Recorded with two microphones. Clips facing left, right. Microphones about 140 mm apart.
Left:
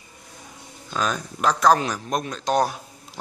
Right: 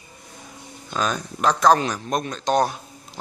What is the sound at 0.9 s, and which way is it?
Speech, centre (ahead or behind).